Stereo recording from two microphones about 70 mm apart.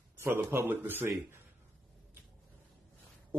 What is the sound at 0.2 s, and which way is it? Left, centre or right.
Speech, right.